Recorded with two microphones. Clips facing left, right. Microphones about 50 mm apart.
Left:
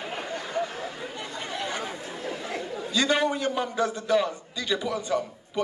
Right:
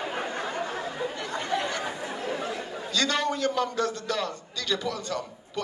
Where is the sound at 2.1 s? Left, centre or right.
Right.